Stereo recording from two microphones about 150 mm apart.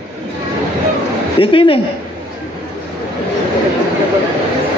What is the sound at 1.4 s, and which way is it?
Speech, 35° left (ahead or behind).